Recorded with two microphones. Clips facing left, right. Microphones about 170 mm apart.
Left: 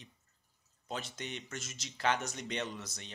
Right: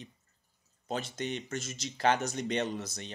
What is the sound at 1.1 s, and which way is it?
Speech, 35° right (ahead or behind).